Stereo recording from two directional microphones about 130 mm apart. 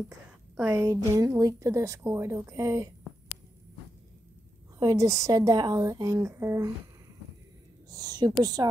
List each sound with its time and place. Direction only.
0.6 s a woman's voice: 20° right (ahead or behind)
4.7 s a woman's voice: 25° right (ahead or behind)
7.9 s a woman's voice: 30° right (ahead or behind)